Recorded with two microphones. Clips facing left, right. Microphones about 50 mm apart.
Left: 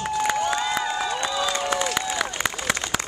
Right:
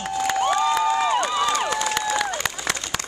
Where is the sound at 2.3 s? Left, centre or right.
Centre.